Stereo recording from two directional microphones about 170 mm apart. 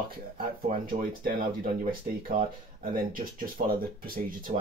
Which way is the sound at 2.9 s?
55° right (ahead or behind).